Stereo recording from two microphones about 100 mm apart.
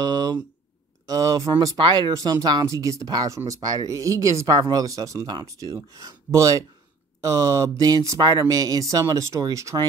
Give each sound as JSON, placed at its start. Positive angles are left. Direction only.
{"t": 0.0, "sound": "speech", "side_deg": -40}
{"t": 1.8, "sound": "speech", "side_deg": -50}